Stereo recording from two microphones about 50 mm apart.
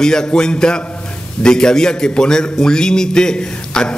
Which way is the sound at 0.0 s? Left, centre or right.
Centre.